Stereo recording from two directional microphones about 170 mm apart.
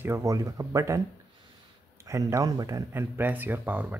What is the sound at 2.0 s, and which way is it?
Speech, 20° right (ahead or behind).